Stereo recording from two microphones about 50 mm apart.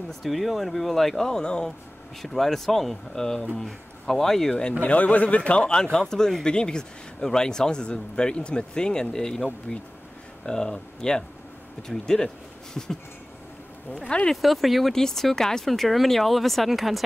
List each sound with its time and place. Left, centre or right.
0.2 s speech: centre
2.2 s speech: centre
4.8 s speech: left; by 12.9 s centre
14.0 s speech: centre
14.3 s speech: centre